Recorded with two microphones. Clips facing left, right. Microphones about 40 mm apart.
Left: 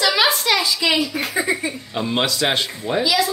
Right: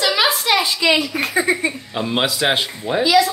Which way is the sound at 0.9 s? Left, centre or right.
Right.